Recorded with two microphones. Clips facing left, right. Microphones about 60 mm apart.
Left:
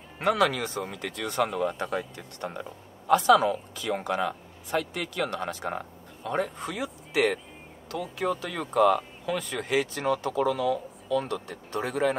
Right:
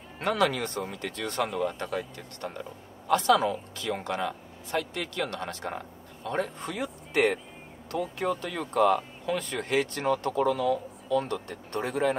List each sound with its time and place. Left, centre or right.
0.2 s speech: centre
2.1 s speech: centre